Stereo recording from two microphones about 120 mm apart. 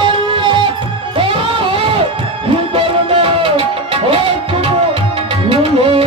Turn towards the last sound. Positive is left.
turn(degrees=-50)  # may be behind; listen again after turning